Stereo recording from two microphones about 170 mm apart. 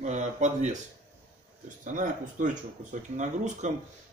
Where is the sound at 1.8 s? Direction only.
50° right (ahead or behind).